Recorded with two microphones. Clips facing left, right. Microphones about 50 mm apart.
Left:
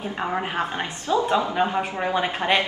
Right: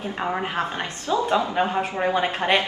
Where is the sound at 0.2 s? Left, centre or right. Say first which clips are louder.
Even; centre.